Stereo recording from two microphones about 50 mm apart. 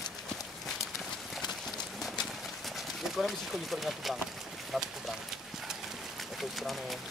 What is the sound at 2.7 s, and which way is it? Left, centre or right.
Speech, centre.